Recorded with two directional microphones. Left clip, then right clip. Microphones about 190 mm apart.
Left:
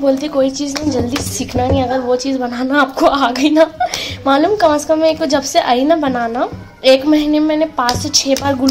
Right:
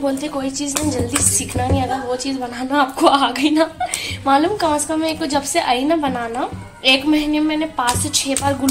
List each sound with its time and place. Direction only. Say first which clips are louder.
0.8 s a sound: left 5 dB; centre (ahead or behind)
2.7 s a woman's voice: left 2 dB; 50° left (ahead or behind)
5.2 s a woman's voice: left 5 dB; 50° left (ahead or behind)